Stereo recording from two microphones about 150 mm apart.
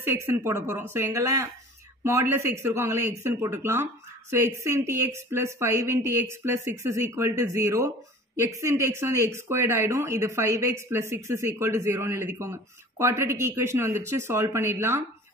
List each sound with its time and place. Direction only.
0.0 s a woman's voice: 15° right (ahead or behind)